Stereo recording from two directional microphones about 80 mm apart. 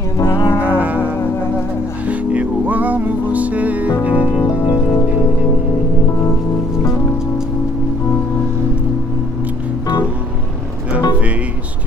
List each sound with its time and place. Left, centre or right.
0.7 s music: right
2.0 s music: centre